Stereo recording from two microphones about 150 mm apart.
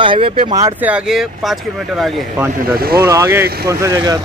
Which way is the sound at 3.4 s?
90° right.